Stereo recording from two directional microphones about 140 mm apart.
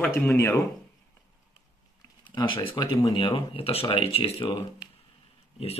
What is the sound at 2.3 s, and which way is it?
Speech, 35° left (ahead or behind).